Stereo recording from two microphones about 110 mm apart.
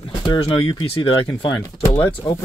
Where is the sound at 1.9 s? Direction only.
25° left (ahead or behind).